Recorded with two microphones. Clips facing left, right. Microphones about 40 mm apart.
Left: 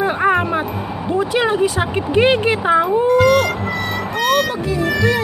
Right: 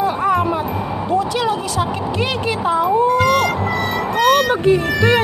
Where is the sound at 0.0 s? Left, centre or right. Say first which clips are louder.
Left 1 dB; left.